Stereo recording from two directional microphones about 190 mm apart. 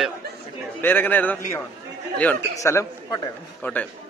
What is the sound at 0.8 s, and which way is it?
A man's voice, 10° left (ahead or behind).